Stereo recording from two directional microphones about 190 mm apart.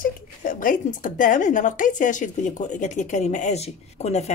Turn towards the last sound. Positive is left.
turn(degrees=35)  # may be behind; listen again after turning